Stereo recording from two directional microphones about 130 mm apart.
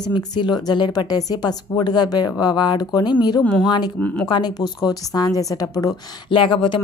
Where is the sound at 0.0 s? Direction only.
35° left (ahead or behind).